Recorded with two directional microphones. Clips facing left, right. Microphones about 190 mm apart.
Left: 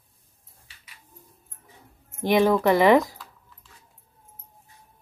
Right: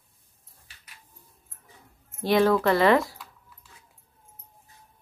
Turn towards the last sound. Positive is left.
turn(degrees=15)  # may be behind; listen again after turning